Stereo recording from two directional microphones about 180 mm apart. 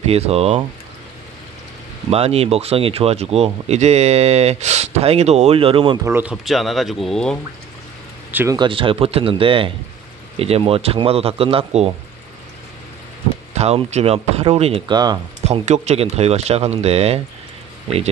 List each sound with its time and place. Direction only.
0.0 s speech: 35° right (ahead or behind)
2.0 s speech: 35° right (ahead or behind)
6.0 s speech: 10° right (ahead or behind)
8.3 s speech: 10° right (ahead or behind)
8.5 s speech: 30° right (ahead or behind)
13.6 s speech: 35° right (ahead or behind)
15.4 s speech: 40° right (ahead or behind)